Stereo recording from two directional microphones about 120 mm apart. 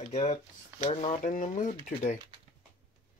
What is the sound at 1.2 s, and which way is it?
Speech, 90° left.